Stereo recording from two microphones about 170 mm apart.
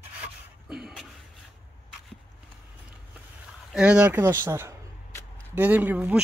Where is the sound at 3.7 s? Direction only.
5° right (ahead or behind).